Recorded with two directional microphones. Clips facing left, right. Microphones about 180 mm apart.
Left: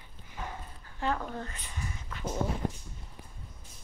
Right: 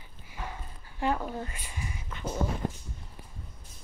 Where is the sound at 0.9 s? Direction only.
15° right (ahead or behind).